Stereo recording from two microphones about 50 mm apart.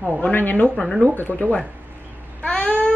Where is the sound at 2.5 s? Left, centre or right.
Left.